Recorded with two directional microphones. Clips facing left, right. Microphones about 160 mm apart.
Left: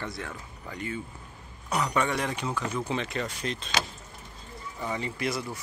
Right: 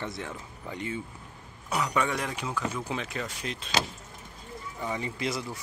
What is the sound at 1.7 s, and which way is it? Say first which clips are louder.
Speech: left 1 dB; 5° right (ahead or behind).